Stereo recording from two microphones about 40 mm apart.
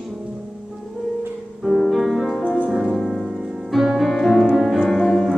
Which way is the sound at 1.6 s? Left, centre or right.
Centre.